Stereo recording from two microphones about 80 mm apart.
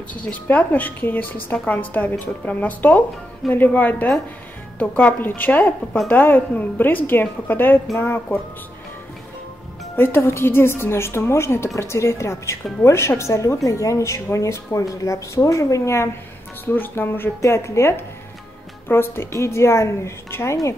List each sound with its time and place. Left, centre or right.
0.1 s a woman's voice: centre
9.9 s a woman's voice: left
16.6 s a woman's voice: left
17.4 s a woman's voice: left